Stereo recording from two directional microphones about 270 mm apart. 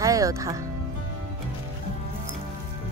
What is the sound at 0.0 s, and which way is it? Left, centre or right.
Music, centre.